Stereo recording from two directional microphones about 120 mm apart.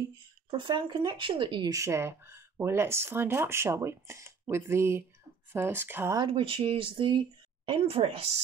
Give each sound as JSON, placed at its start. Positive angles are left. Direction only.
{"t": 0.5, "sound": "speech", "side_deg": -40}
{"t": 1.7, "sound": "speech", "side_deg": -25}
{"t": 6.1, "sound": "speech", "side_deg": -45}